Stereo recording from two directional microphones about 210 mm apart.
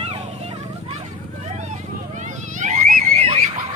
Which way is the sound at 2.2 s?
35° right (ahead or behind).